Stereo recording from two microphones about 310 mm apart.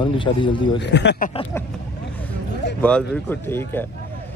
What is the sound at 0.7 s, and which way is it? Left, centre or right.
Speech, left.